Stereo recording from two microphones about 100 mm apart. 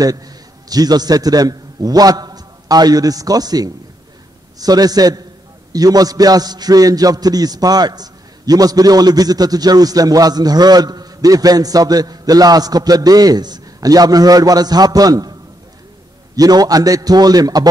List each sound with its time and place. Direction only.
0.7 s a man's voice: 40° right (ahead or behind)
16.3 s a man's voice: 40° right (ahead or behind)